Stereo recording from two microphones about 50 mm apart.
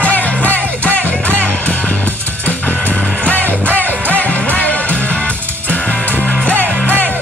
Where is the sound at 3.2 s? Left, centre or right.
Left.